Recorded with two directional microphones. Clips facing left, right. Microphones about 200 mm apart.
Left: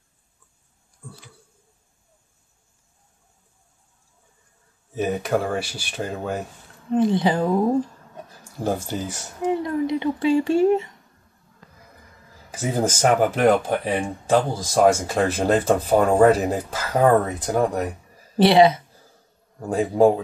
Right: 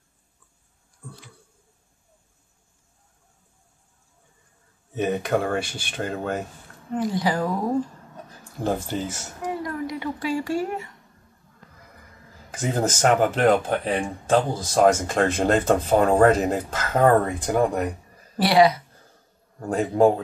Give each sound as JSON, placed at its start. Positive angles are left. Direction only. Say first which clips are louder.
{"t": 4.9, "sound": "speech", "louder": "even", "side_deg": 5}
{"t": 6.9, "sound": "speech", "louder": "left 5 dB", "side_deg": 25}
{"t": 8.6, "sound": "speech", "louder": "even", "side_deg": 10}
{"t": 9.4, "sound": "speech", "louder": "left 6 dB", "side_deg": 25}
{"t": 12.4, "sound": "speech", "louder": "left 1 dB", "side_deg": 10}
{"t": 18.4, "sound": "speech", "louder": "left 3 dB", "side_deg": 25}
{"t": 19.6, "sound": "speech", "louder": "left 1 dB", "side_deg": 10}